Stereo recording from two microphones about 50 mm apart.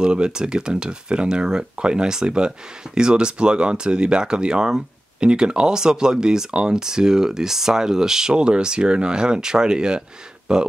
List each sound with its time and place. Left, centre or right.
0.0 s speech: centre